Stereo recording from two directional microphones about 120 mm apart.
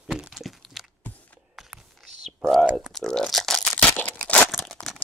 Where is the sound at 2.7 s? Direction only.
5° left (ahead or behind).